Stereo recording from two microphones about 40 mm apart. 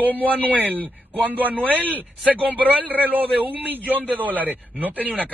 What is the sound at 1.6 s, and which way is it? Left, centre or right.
Speech, left.